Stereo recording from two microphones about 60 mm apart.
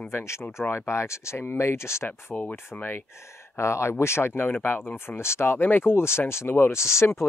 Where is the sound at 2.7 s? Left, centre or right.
Left.